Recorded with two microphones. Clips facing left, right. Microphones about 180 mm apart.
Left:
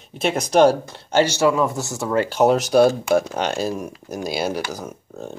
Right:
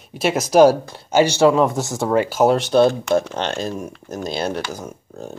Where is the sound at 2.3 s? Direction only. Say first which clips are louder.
Left 2 dB; centre (ahead or behind).